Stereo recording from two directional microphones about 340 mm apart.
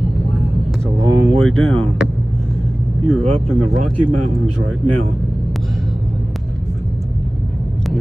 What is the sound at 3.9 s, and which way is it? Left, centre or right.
Speech, right.